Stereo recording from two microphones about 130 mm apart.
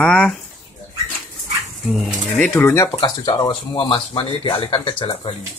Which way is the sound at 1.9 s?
Centre (ahead or behind).